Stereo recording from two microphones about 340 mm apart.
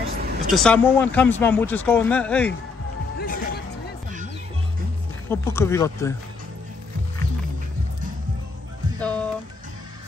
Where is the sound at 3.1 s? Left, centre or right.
Left.